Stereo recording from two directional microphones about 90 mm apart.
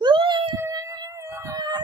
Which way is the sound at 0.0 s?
60° right (ahead or behind).